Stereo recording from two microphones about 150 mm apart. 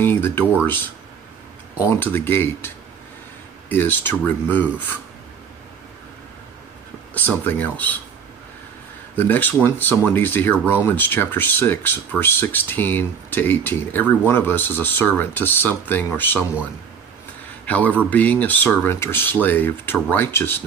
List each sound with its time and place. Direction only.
0.0 s speech: 15° left (ahead or behind)
1.8 s speech: 15° left (ahead or behind)
7.2 s speech: 10° left (ahead or behind)
9.1 s speech: 10° left (ahead or behind)
17.6 s speech: 10° left (ahead or behind)